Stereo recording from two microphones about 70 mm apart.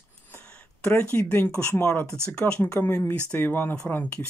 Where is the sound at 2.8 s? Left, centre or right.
Left.